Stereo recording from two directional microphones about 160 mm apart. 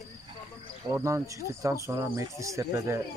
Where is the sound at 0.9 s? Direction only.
20° right (ahead or behind).